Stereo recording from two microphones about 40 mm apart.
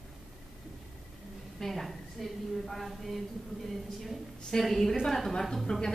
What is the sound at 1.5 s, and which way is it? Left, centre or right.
A woman's voice, centre.